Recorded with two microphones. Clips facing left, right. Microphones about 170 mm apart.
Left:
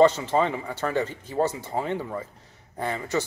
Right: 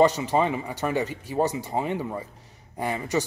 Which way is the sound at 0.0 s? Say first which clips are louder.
Left 1 dB; 15° right (ahead or behind).